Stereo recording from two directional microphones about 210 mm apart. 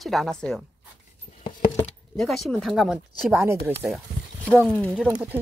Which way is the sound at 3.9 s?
5° left (ahead or behind).